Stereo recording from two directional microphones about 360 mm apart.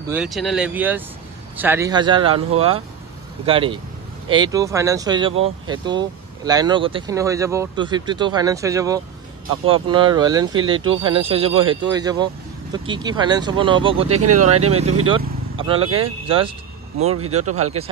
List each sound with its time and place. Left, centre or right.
0.1 s speech: centre
14.2 s speech: right
15.0 s vehicle: centre
16.0 s speech: centre